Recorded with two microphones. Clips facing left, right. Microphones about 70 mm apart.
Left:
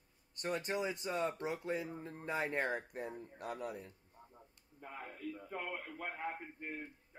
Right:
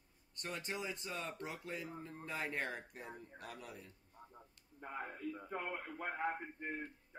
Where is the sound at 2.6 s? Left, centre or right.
Left.